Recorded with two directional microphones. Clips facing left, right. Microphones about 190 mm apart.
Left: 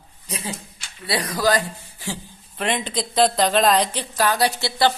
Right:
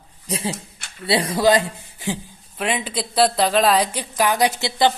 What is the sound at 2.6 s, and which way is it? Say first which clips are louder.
Speech: even; 5° right (ahead or behind).